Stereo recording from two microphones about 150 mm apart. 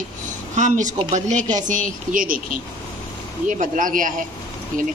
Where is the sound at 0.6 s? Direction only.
55° right (ahead or behind).